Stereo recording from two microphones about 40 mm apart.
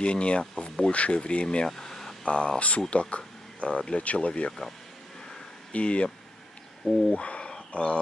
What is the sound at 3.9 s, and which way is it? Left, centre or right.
Speech, left.